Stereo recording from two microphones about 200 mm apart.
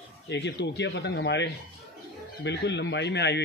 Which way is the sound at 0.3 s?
60° left (ahead or behind).